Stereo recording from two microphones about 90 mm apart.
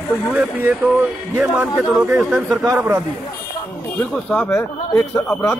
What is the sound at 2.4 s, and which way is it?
Speech, 40° right (ahead or behind).